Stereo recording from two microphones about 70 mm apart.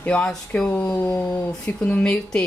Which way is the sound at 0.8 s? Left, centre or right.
Left.